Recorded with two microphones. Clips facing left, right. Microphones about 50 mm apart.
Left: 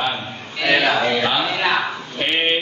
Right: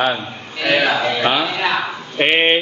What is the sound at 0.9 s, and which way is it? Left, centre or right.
Speech, centre.